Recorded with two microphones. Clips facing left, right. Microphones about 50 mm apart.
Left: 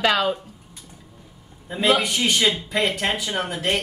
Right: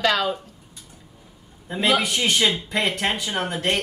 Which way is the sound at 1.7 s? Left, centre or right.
Centre.